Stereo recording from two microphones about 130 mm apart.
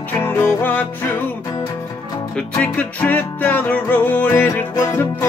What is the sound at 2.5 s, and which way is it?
Music, 10° left (ahead or behind).